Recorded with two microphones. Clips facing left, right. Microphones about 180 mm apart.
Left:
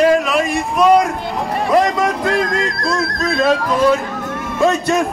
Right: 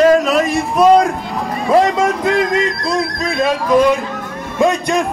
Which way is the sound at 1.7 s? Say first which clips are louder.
Right 3 dB; 25° right (ahead or behind).